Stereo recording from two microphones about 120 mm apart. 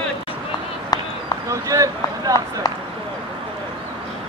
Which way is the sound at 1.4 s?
30° right (ahead or behind).